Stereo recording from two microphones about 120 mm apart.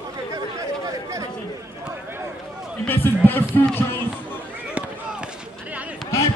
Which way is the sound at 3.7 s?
20° left (ahead or behind).